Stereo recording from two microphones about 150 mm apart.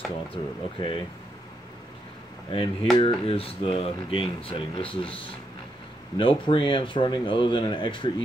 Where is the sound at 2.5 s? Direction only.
35° left (ahead or behind).